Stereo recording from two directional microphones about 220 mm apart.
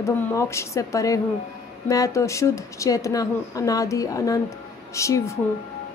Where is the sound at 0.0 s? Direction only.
10° left (ahead or behind).